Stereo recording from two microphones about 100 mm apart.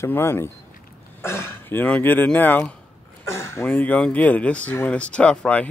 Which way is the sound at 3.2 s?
25° left (ahead or behind).